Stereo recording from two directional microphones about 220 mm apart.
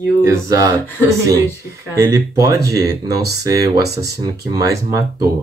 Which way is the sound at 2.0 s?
15° right (ahead or behind).